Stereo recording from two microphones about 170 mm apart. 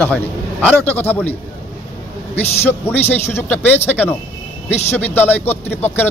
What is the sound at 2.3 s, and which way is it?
A man's voice, 10° left (ahead or behind).